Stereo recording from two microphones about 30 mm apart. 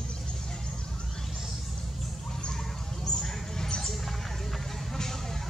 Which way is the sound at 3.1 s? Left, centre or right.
Centre.